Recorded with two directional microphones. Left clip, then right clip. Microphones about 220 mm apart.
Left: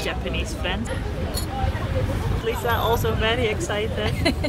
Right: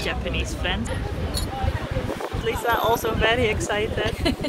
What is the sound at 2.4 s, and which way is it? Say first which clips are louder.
Speech: right 1 dB; 25° right (ahead or behind).